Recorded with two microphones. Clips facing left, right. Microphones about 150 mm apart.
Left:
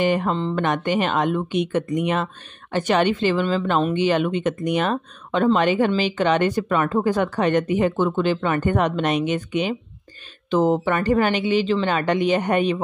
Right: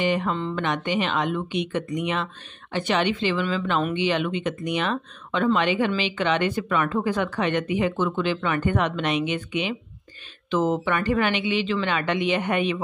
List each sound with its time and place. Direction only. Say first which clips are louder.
0.0 s speech: left 3 dB; 45° left (ahead or behind)